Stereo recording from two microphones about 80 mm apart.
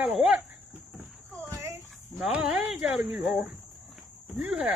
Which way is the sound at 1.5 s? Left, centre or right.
Right.